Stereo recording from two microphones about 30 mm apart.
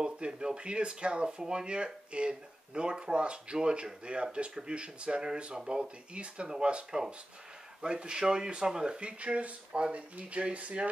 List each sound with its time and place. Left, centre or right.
0.0 s speech: right
9.0 s speech: right